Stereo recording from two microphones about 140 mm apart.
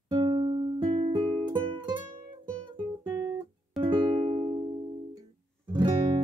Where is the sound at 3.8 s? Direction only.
35° right (ahead or behind).